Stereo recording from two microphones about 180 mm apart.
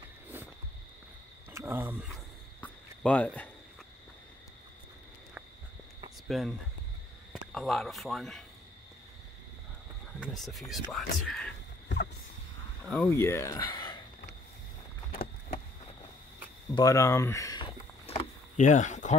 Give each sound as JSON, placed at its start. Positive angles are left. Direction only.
{"t": 1.5, "sound": "speech", "side_deg": -15}
{"t": 2.6, "sound": "a sound", "side_deg": 10}
{"t": 6.2, "sound": "speech", "side_deg": 0}
{"t": 7.5, "sound": "speech", "side_deg": 0}
{"t": 10.2, "sound": "speech", "side_deg": 0}
{"t": 12.8, "sound": "speech", "side_deg": 0}
{"t": 13.1, "sound": "speech", "side_deg": 15}
{"t": 16.7, "sound": "a sound", "side_deg": 20}